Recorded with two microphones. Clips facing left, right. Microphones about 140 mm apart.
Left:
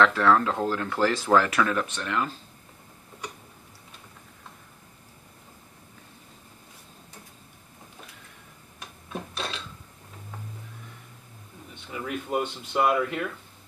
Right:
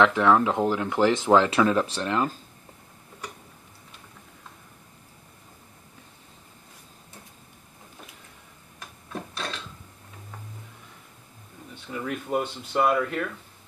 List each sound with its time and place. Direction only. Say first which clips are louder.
0.0 s speech: right 1 dB; 15° right (ahead or behind); by 2.2 s 30° right (ahead or behind)
11.9 s speech: right 1 dB; 5° left (ahead or behind)